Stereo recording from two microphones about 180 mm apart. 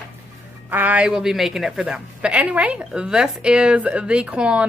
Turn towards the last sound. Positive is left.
turn(degrees=-5)  # may be behind; listen again after turning